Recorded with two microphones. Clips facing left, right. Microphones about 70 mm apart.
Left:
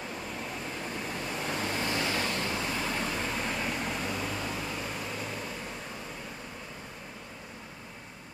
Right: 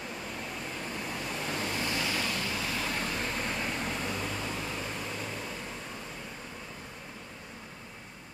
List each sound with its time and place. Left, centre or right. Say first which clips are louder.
0.8 s vehicle: left 1 dB; centre
1.9 s vehicle: left 2 dB; left
2.7 s vehicle: left 1 dB; centre